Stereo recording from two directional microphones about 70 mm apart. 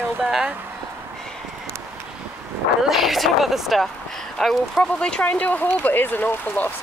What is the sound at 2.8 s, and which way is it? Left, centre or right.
A woman's voice, centre.